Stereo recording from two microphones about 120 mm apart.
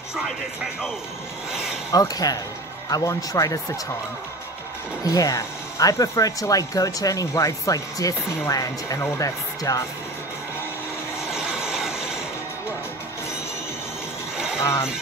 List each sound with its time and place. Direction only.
0.1 s speech: centre (ahead or behind)
1.9 s a man's voice: 30° left (ahead or behind)
5.0 s speech: 30° left (ahead or behind)
11.2 s vehicle: 5° right (ahead or behind)
14.3 s a sound: 5° right (ahead or behind)
14.6 s speech: 20° left (ahead or behind)